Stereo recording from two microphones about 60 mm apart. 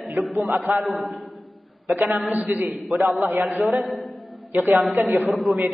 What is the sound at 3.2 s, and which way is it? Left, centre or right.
Speech, right.